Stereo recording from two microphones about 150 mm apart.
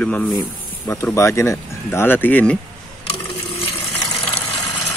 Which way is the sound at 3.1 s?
40° left (ahead or behind).